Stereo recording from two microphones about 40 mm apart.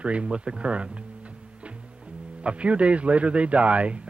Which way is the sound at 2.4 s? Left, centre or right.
Right.